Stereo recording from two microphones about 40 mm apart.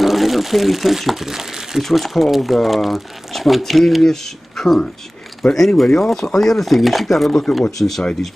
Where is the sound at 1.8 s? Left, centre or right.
Centre.